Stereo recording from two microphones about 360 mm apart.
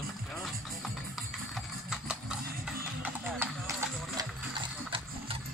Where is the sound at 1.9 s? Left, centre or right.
Centre.